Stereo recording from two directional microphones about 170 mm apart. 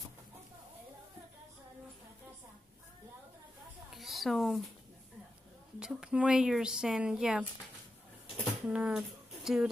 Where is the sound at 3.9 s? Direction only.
Centre (ahead or behind).